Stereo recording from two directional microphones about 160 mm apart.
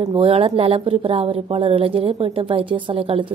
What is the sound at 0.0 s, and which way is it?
Speech, 30° right (ahead or behind).